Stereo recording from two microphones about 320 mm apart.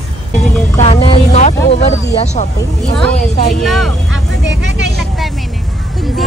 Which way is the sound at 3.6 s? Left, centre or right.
Centre.